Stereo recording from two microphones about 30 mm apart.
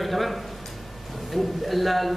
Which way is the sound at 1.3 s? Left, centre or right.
Centre.